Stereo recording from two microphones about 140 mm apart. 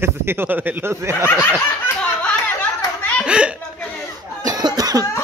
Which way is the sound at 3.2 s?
5° right (ahead or behind).